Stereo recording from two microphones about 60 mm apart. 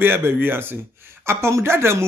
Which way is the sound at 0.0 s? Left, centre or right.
Right.